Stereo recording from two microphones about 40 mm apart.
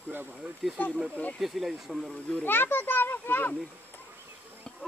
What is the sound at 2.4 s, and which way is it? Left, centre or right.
A child's voice, left.